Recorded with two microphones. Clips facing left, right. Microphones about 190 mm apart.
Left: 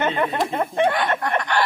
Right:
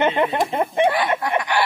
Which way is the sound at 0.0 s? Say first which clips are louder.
Right 3 dB; 15° right (ahead or behind).